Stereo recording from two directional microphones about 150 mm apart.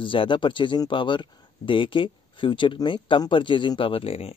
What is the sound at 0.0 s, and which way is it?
Speech, 35° left (ahead or behind).